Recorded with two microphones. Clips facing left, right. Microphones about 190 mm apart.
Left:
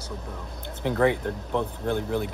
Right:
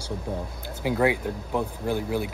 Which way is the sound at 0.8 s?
5° right (ahead or behind).